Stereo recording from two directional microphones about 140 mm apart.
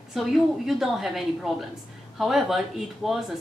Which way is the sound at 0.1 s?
Centre (ahead or behind).